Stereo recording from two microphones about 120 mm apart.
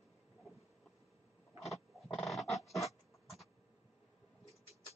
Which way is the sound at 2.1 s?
5° left (ahead or behind).